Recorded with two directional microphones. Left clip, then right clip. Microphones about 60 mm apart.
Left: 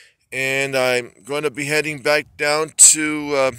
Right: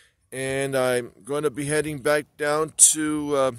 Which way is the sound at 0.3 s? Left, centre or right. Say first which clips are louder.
Left 6 dB; centre.